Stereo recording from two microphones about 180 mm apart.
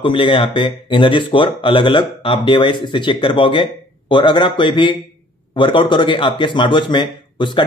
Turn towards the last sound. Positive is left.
turn(degrees=25)  # may be behind; listen again after turning